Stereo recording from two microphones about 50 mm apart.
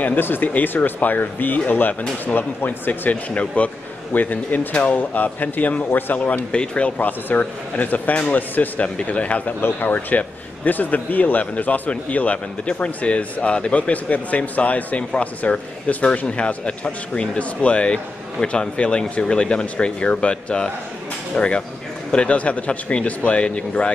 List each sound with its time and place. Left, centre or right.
0.0 s speech: left
5.9 s a man's voice: left
6.1 s speech: left
7.0 s speech: left
9.6 s speech: left